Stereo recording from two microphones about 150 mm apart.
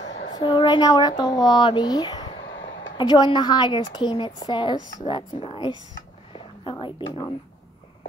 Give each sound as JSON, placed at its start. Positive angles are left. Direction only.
{"t": 0.3, "sound": "a woman's voice", "side_deg": 30}
{"t": 6.3, "sound": "whispering", "side_deg": 35}